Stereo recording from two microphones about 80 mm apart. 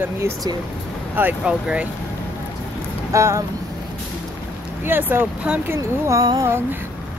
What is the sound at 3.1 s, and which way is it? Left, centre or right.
Speech, right.